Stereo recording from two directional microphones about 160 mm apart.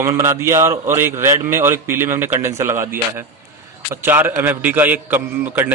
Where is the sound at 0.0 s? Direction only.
15° right (ahead or behind).